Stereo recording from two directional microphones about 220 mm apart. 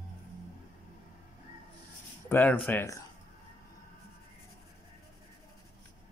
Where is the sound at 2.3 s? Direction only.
10° left (ahead or behind).